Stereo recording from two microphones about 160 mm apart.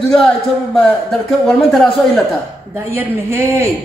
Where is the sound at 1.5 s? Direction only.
Centre (ahead or behind).